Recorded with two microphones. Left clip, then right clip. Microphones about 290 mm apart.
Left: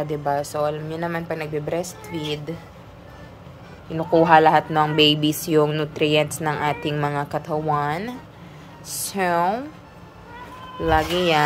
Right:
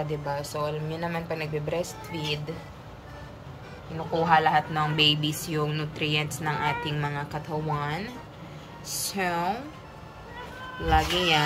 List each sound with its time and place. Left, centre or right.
0.2 s speech: centre
3.9 s speech: left
10.9 s speech: centre